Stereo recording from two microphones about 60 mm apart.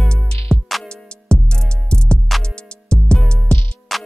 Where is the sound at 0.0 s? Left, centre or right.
Centre.